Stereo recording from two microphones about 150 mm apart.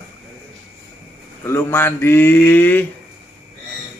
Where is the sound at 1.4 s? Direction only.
15° left (ahead or behind).